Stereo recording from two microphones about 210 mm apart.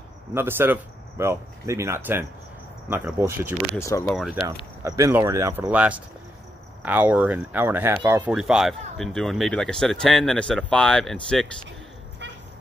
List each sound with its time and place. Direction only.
0.3 s speech: 10° right (ahead or behind)
3.7 s speech: 15° left (ahead or behind)
4.1 s speech: centre (ahead or behind)
4.8 s speech: 15° right (ahead or behind); by 11.1 s 5° left (ahead or behind)